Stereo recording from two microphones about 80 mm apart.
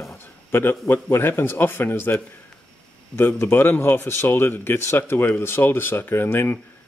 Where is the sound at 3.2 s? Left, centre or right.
Left.